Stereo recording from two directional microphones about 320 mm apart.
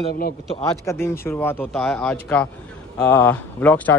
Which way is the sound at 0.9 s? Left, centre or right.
Centre.